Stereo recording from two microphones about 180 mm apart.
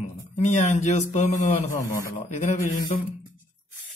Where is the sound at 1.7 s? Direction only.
15° left (ahead or behind).